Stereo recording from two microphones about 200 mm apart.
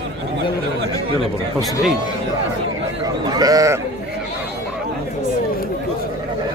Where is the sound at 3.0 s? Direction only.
20° right (ahead or behind).